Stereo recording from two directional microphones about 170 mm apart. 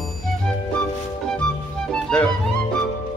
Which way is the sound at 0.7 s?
5° left (ahead or behind).